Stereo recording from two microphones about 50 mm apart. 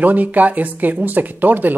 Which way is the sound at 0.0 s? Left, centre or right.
Right.